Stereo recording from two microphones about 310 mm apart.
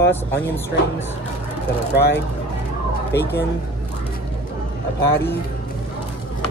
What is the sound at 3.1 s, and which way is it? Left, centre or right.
Speech, left.